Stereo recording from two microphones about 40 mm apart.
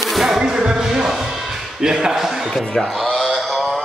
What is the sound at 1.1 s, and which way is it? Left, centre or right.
Music, centre.